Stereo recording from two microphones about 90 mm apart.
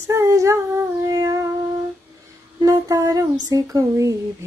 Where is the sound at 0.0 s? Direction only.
35° right (ahead or behind).